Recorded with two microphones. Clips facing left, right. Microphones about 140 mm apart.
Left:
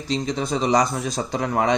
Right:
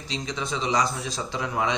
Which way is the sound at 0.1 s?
40° left (ahead or behind).